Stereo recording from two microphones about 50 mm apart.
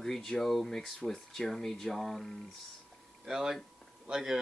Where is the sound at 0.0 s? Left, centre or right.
Centre.